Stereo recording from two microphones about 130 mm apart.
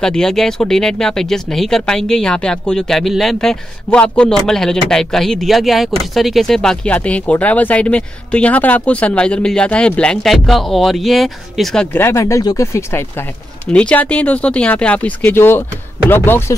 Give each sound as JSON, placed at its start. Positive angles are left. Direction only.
{"t": 0.0, "sound": "speech", "side_deg": 5}
{"t": 11.9, "sound": "speech", "side_deg": 20}
{"t": 13.7, "sound": "speech", "side_deg": 10}